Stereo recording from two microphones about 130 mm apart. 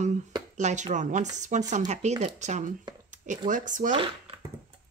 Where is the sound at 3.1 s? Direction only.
80° right.